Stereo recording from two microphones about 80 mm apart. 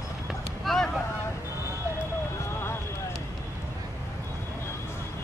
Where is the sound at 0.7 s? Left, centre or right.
Centre.